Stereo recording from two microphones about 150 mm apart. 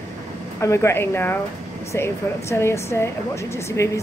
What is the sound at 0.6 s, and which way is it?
Speech, 20° left (ahead or behind).